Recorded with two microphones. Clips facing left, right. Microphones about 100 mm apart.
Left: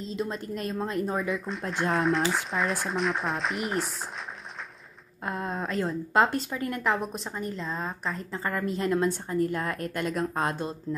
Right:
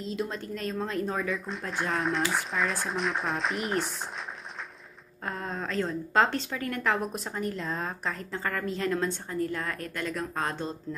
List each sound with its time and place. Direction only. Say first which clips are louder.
0.1 s speech: left 1 dB; centre (ahead or behind)
0.6 s speech: even; 15° left (ahead or behind)
1.0 s speech: left 2 dB; 5° left (ahead or behind)
5.2 s speech: left 3 dB; 15° left (ahead or behind)
6.8 s speech: right 1 dB; centre (ahead or behind)
8.5 s speech: left 2 dB; 15° left (ahead or behind)
10.5 s speech: left 2 dB; 10° left (ahead or behind)